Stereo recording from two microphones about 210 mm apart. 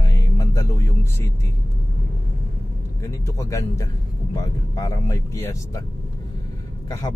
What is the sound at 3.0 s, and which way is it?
Speech, 15° left (ahead or behind).